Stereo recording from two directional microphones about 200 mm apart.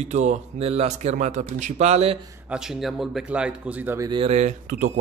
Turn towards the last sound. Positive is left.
turn(degrees=-40)  # may be behind; listen again after turning